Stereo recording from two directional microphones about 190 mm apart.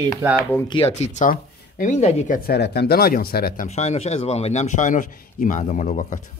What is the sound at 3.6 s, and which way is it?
Speech, 35° left (ahead or behind).